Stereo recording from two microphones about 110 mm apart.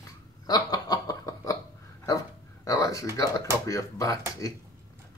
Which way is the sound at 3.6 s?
30° left (ahead or behind).